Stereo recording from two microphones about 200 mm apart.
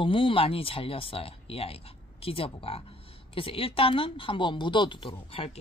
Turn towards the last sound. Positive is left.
turn(degrees=30)  # may be behind; listen again after turning